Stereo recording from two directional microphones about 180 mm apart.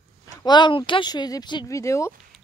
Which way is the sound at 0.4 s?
25° left (ahead or behind).